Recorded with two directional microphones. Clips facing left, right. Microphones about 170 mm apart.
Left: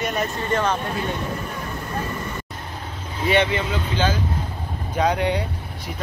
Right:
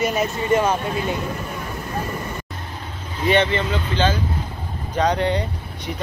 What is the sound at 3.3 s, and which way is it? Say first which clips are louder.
Speech: right 2 dB; 10° left (ahead or behind).